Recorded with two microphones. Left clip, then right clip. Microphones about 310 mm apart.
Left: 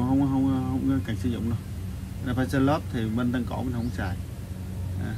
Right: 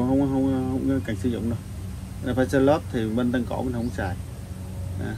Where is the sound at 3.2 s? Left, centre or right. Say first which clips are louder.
Right 3 dB; right.